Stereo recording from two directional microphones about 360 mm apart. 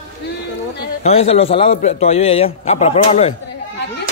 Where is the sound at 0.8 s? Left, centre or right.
Centre.